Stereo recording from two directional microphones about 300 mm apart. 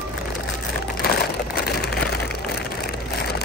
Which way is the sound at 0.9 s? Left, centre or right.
Left.